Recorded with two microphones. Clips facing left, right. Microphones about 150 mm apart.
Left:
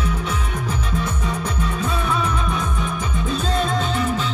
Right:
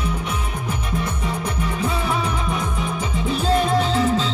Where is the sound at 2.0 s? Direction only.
20° right (ahead or behind).